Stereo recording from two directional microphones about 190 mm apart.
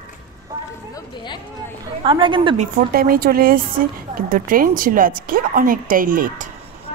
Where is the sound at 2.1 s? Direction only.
25° right (ahead or behind).